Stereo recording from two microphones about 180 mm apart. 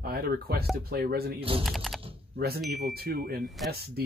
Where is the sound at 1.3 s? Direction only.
30° right (ahead or behind).